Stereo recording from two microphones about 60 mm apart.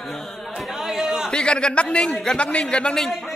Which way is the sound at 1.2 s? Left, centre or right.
Centre.